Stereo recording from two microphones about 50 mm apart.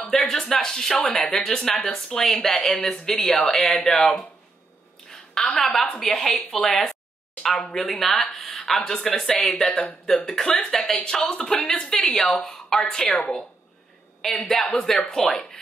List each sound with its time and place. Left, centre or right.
0.1 s speech: centre
5.1 s a sound: centre
5.6 s a woman's voice: centre
8.5 s a sound: centre
8.9 s speech: centre
12.6 s a woman's voice: centre
13.1 s a woman's voice: left
14.4 s speech: centre